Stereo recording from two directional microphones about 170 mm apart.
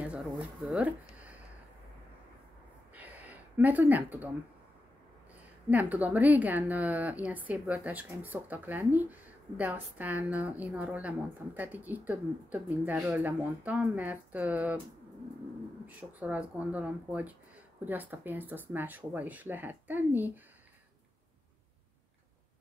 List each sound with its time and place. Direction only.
0.0 s speech: 5° right (ahead or behind)
2.9 s a sound: 10° right (ahead or behind)
5.7 s a woman's voice: 10° right (ahead or behind)
16.0 s a woman's voice: 10° right (ahead or behind)